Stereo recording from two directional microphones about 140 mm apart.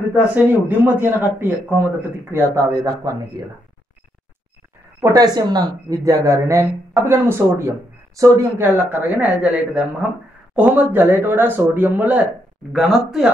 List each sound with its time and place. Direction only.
0.3 s speech: 15° right (ahead or behind)
5.0 s speech: 25° right (ahead or behind)
12.7 s speech: centre (ahead or behind)